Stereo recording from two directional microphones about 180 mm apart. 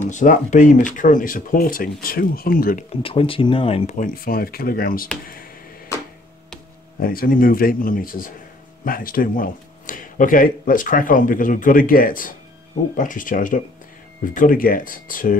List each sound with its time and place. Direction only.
0.1 s speech: 45° left (ahead or behind)
3.0 s speech: 30° left (ahead or behind); by 5.0 s 55° left (ahead or behind)
7.0 s speech: 55° left (ahead or behind)